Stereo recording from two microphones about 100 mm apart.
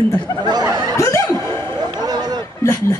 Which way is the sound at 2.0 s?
40° right (ahead or behind).